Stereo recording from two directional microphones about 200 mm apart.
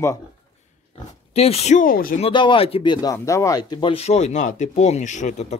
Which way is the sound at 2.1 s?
25° left (ahead or behind).